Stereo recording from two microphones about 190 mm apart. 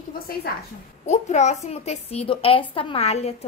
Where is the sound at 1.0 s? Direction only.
35° left (ahead or behind).